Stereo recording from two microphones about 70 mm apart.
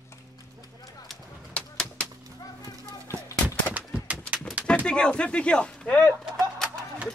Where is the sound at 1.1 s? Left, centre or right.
Centre.